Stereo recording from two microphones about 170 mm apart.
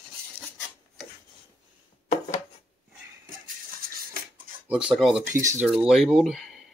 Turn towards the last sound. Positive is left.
turn(degrees=0)  # may be behind; listen again after turning